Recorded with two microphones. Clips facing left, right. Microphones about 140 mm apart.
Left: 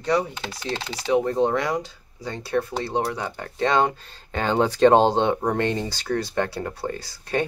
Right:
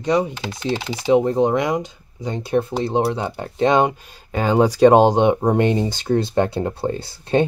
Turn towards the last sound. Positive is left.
turn(degrees=-25)  # may be behind; listen again after turning